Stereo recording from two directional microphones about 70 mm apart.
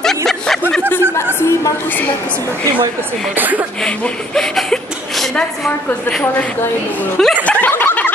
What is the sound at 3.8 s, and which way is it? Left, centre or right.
A woman's voice, centre.